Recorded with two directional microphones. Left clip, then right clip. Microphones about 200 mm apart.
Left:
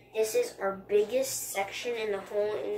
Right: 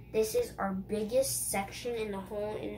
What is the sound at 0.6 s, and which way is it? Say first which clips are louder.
Speech: left 3 dB; 5° right (ahead or behind).